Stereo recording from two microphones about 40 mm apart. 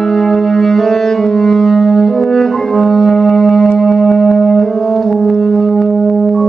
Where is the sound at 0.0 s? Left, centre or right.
Centre.